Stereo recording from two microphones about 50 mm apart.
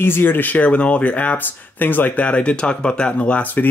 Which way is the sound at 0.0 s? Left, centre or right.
Left.